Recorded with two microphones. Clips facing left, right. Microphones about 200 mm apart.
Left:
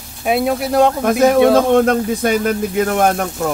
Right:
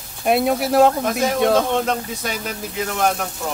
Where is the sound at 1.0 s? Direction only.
55° left (ahead or behind).